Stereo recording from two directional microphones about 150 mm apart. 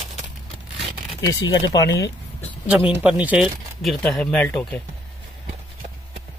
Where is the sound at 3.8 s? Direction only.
5° left (ahead or behind).